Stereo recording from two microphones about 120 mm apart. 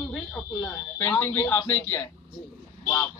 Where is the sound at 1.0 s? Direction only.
20° left (ahead or behind).